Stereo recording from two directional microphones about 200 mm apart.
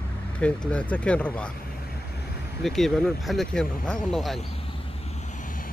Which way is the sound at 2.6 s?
Centre (ahead or behind).